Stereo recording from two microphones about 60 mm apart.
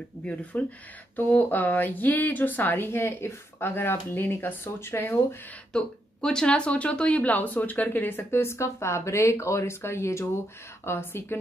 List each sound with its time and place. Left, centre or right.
0.2 s speech: left
5.7 s speech: centre; by 11.3 s left